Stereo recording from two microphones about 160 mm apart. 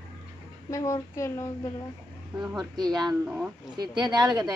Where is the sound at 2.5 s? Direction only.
25° right (ahead or behind).